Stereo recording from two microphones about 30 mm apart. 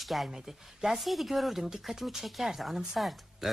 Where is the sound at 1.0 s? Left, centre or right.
Centre.